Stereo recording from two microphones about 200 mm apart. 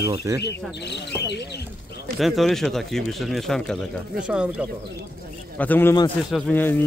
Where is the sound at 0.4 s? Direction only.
55° left (ahead or behind).